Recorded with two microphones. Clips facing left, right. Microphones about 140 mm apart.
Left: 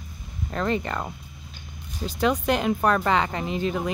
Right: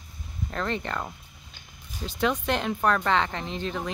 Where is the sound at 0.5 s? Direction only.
5° left (ahead or behind).